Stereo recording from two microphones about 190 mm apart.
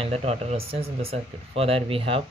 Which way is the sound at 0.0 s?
35° right (ahead or behind).